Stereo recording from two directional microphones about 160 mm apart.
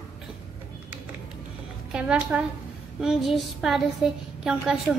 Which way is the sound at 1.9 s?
5° right (ahead or behind).